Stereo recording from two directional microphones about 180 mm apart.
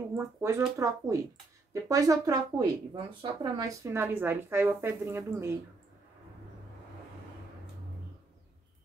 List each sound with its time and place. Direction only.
0.1 s speech: 15° right (ahead or behind)